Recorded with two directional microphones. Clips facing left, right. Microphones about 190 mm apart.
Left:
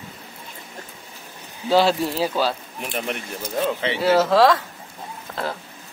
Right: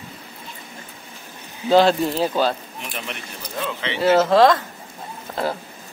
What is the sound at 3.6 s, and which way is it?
Speech, 45° left (ahead or behind).